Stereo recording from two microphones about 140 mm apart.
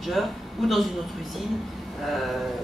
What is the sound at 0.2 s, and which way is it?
Speech, centre (ahead or behind).